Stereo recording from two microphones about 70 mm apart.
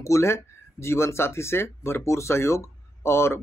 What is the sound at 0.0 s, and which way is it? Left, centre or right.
Speech, left.